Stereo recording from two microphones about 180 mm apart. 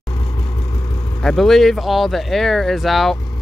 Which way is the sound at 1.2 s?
Centre (ahead or behind).